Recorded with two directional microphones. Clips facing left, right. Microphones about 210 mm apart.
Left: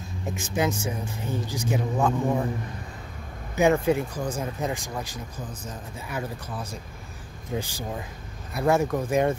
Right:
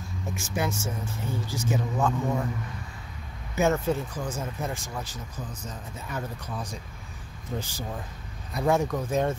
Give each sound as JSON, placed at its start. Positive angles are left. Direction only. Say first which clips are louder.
{"t": 0.2, "sound": "speech", "louder": "left 4 dB", "side_deg": 15}
{"t": 3.6, "sound": "speech", "louder": "left 4 dB", "side_deg": 15}